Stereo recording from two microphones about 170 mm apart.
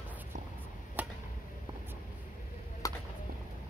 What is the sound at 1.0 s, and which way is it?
Chop, 10° right (ahead or behind).